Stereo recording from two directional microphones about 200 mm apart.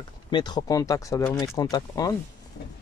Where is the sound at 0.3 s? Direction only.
20° left (ahead or behind).